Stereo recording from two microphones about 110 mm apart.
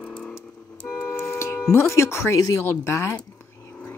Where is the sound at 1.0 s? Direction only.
20° left (ahead or behind).